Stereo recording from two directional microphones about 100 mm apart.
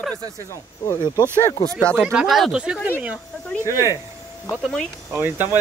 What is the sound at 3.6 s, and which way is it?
Speech, 30° right (ahead or behind).